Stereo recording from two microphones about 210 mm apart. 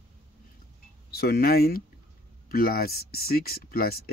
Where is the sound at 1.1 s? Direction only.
45° left (ahead or behind).